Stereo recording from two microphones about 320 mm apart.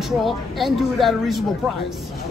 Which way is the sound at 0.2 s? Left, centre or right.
Centre.